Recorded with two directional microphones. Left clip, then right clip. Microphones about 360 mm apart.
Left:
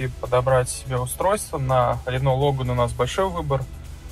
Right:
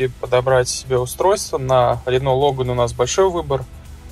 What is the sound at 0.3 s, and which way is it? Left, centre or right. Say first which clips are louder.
Speech: right 3 dB; centre.